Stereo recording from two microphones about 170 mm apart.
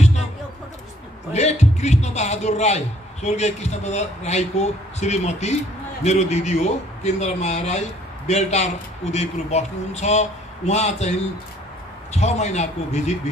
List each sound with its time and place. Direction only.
1.3 s a man's voice: 40° left (ahead or behind)
12.1 s a man's voice: 40° left (ahead or behind)